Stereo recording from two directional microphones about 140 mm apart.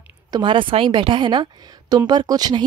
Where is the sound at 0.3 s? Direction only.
35° right (ahead or behind).